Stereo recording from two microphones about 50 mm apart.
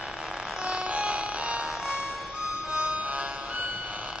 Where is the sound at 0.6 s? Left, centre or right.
Right.